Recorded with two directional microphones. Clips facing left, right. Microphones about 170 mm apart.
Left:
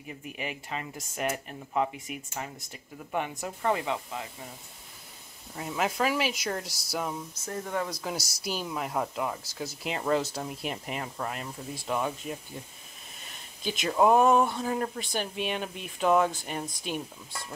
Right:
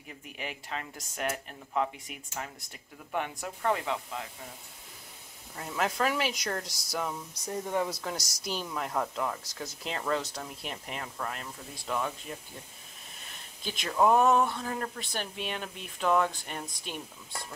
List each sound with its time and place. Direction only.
0.4 s speech: 5° left (ahead or behind)
5.6 s speech: 5° left (ahead or behind)
7.3 s speech: 15° right (ahead or behind)
7.9 s speech: 5° left (ahead or behind)
13.7 s speech: 5° left (ahead or behind)